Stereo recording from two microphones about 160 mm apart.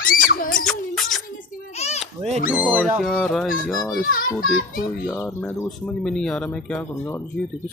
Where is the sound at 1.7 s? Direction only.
45° left (ahead or behind).